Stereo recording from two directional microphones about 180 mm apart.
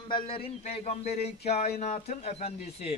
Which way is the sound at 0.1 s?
30° left (ahead or behind).